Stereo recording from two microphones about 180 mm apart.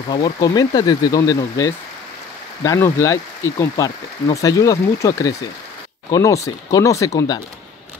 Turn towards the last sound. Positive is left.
turn(degrees=20)  # may be behind; listen again after turning